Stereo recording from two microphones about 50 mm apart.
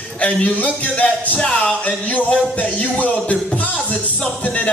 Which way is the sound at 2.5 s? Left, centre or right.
Left.